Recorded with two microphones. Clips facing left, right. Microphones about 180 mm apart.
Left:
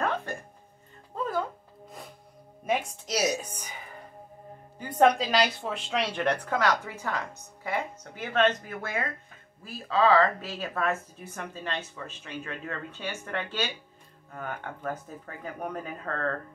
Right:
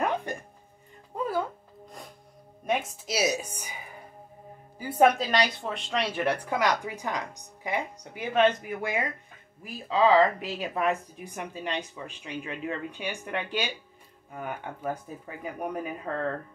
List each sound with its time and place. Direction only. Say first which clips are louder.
0.0 s music: right 1 dB; 15° right (ahead or behind)
2.6 s speech: even; centre (ahead or behind)